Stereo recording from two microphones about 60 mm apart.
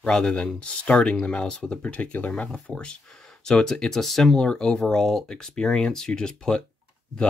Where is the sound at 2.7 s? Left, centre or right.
Centre.